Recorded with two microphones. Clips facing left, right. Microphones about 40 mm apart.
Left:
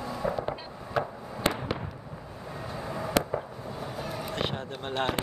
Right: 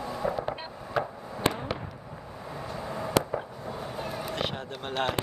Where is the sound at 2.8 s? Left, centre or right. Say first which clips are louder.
Right 1 dB; centre.